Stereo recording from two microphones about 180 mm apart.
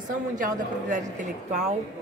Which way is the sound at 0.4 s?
45° right (ahead or behind).